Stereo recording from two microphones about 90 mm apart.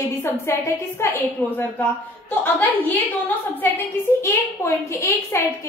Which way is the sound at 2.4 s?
20° left (ahead or behind).